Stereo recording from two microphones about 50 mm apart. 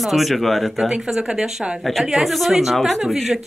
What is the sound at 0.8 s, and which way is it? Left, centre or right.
Speech, centre.